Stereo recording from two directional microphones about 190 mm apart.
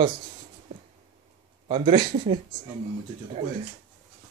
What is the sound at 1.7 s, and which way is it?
Speech, 25° right (ahead or behind).